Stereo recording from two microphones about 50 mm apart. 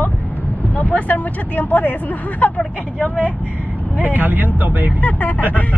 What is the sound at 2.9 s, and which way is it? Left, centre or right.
Speech, left.